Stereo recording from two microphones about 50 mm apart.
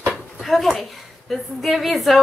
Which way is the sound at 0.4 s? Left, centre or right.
Centre.